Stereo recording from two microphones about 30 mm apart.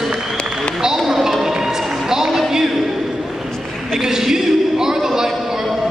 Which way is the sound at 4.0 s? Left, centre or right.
Centre.